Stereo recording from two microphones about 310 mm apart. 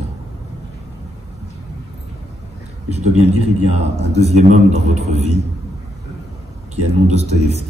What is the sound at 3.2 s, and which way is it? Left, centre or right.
A man's voice, right.